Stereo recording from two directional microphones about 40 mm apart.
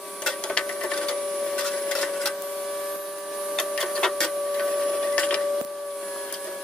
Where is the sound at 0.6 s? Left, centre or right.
Left.